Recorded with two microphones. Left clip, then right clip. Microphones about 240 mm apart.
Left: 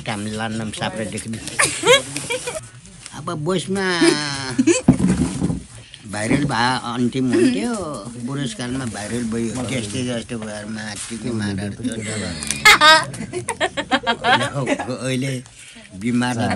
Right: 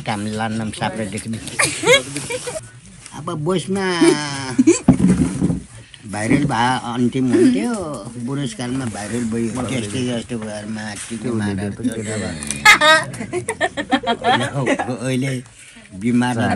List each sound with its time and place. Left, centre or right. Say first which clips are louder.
0.0 s speech: right 3 dB; centre
1.6 s speech: even; left
3.3 s speech: right 1 dB; centre
5.0 s boat: right 3 dB; left
6.1 s speech: right 2 dB; centre
13.8 s speech: even; left
14.4 s speech: right 2 dB; centre